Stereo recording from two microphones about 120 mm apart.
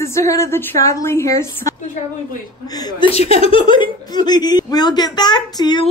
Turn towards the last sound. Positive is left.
turn(degrees=35)  # may be behind; listen again after turning